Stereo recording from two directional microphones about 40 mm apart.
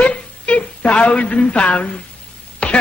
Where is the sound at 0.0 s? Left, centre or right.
Left.